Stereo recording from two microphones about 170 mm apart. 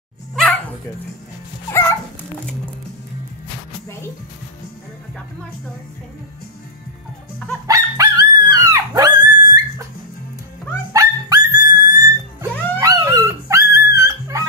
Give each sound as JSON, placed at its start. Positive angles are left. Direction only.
{"t": 1.7, "sound": "dog", "side_deg": 20}
{"t": 7.6, "sound": "dog", "side_deg": -20}
{"t": 10.9, "sound": "music", "side_deg": -20}